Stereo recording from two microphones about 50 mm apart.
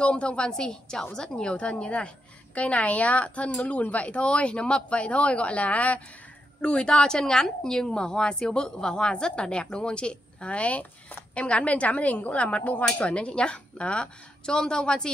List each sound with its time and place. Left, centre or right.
0.0 s a woman's voice: left